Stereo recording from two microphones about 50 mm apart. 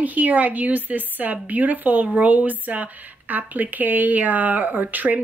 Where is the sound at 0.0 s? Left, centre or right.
Right.